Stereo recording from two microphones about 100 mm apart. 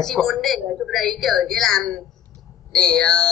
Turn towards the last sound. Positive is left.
turn(degrees=5)  # may be behind; listen again after turning